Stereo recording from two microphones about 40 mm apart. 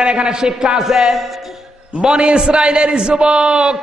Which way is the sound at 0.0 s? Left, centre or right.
Right.